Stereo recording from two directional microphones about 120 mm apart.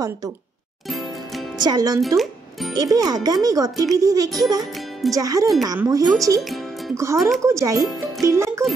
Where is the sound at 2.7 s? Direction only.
30° right (ahead or behind).